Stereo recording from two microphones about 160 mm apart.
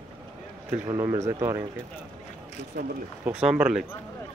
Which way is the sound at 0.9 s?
20° right (ahead or behind).